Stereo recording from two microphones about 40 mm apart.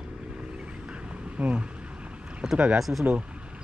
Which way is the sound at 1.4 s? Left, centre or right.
Right.